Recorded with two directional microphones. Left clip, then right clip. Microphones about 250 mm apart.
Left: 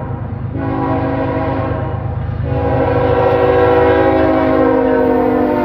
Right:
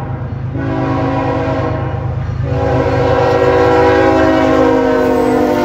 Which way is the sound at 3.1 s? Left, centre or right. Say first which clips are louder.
Right 2 dB; centre.